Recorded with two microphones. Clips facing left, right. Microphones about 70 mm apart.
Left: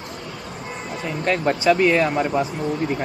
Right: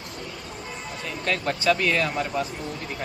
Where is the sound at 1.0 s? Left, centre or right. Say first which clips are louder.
Left 6 dB; left.